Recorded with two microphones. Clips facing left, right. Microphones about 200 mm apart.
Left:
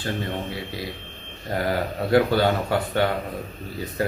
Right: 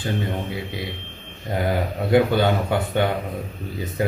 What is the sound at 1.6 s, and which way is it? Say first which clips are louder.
A man's voice: right 1 dB; 20° right (ahead or behind).